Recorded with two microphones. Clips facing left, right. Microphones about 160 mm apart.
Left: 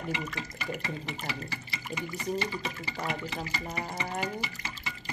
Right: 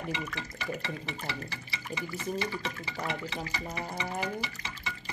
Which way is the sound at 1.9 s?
15° left (ahead or behind).